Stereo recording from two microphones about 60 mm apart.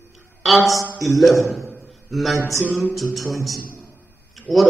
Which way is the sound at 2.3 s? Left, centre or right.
Right.